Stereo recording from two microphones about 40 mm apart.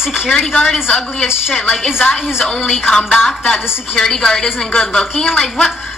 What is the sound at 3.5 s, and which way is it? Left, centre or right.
A woman's voice, centre.